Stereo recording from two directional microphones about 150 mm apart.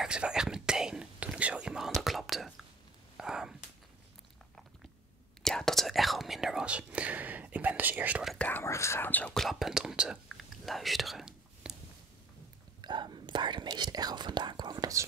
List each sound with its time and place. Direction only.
0.0 s whispering: 5° right (ahead or behind)
3.2 s a sound: 5° right (ahead or behind)
5.4 s whispering: 5° left (ahead or behind)
8.4 s speech: 15° left (ahead or behind); by 11.7 s 5° right (ahead or behind)
12.8 s speech: 30° right (ahead or behind)